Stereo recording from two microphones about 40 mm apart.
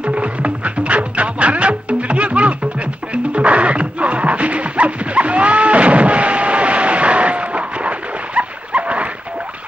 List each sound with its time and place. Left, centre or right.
0.0 s music: right
8.4 s dog: right